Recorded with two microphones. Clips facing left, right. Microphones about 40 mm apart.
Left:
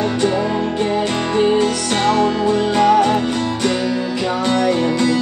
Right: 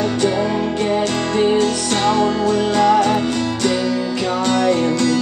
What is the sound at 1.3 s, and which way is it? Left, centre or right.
Music, centre.